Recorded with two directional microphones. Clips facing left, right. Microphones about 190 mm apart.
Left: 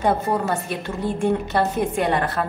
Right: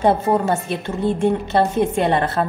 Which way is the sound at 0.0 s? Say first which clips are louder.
Right 4 dB; 25° right (ahead or behind).